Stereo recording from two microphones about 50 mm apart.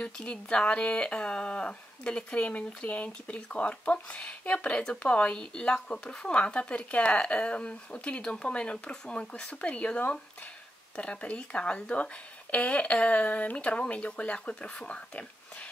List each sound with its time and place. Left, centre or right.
0.0 s speech: left